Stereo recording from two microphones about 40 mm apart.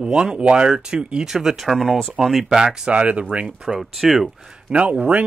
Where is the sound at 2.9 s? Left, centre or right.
Right.